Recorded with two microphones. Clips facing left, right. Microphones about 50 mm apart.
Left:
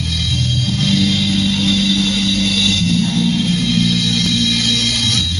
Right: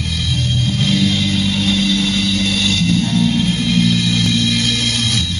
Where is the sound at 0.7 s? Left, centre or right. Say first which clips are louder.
Left 1 dB; centre.